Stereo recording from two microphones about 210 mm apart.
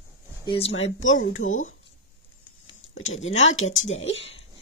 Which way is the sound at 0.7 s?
65° left (ahead or behind).